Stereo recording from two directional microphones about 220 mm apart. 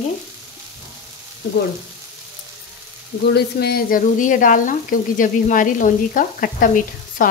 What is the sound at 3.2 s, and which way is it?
Speech, 50° left (ahead or behind).